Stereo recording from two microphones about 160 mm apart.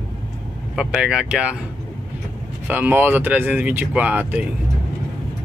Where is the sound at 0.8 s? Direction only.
5° right (ahead or behind).